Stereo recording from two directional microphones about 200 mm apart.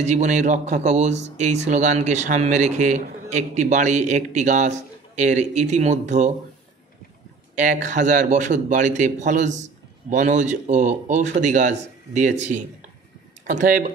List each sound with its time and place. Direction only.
0.0 s speech: 35° right (ahead or behind)
7.5 s speech: 40° right (ahead or behind)